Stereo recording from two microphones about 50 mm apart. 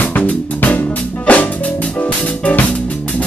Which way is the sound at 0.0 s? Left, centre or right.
Left.